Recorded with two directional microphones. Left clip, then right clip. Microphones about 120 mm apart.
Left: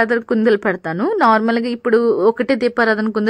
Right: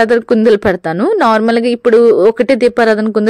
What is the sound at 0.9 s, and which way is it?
A woman's voice, 30° right (ahead or behind).